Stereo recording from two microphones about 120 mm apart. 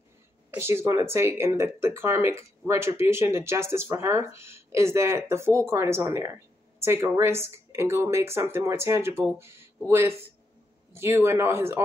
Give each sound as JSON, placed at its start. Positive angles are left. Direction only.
{"t": 0.5, "sound": "speech", "side_deg": -20}